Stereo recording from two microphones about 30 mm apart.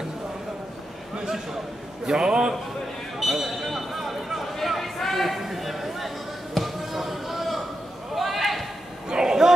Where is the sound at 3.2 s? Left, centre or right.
Centre.